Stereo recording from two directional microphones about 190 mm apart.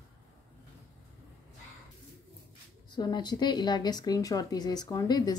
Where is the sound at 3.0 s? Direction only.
20° left (ahead or behind).